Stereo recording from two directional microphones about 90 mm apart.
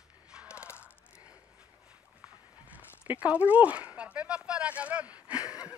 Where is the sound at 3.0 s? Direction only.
15° right (ahead or behind).